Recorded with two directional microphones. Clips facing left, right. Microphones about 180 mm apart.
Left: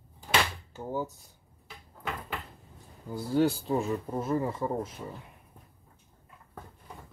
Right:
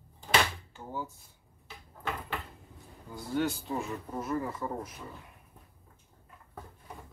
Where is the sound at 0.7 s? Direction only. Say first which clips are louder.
Left 8 dB; 40° left (ahead or behind).